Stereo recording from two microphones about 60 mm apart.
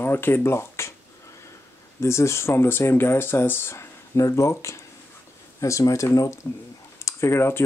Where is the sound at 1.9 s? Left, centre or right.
Left.